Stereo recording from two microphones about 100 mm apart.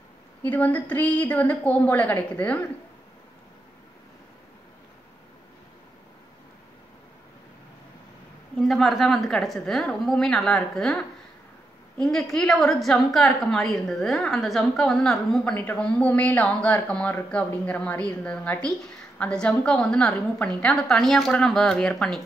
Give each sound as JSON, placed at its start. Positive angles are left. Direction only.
{"t": 0.4, "sound": "a woman's voice", "side_deg": 15}
{"t": 8.5, "sound": "a woman's voice", "side_deg": 0}